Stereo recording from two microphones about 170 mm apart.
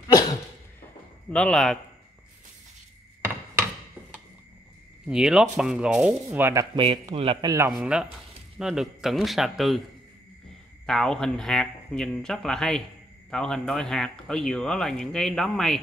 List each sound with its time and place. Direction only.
1.3 s speech: 5° left (ahead or behind)
5.0 s speech: 5° right (ahead or behind); by 6.9 s 20° right (ahead or behind)
6.9 s speech: 30° right (ahead or behind)
7.7 s speech: 5° right (ahead or behind)
10.9 s speech: 5° left (ahead or behind)